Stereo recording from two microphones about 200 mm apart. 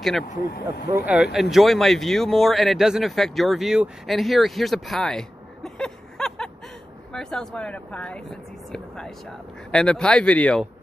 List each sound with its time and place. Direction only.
0.5 s speech: 55° left (ahead or behind)
0.9 s speech: 5° right (ahead or behind)